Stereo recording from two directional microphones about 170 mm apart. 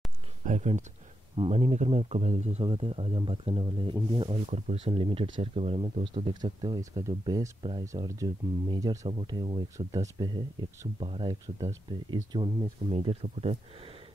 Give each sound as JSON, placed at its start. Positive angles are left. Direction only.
{"t": 0.5, "sound": "speech", "side_deg": -45}